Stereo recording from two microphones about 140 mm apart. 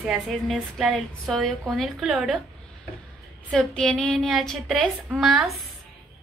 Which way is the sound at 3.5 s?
5° left (ahead or behind).